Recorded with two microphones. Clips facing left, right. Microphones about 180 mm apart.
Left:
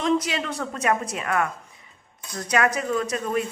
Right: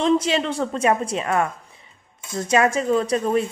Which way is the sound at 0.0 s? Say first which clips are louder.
Right 4 dB; 25° right (ahead or behind).